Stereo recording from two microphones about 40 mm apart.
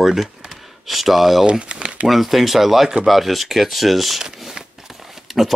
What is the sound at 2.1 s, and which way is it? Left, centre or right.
Speech, centre.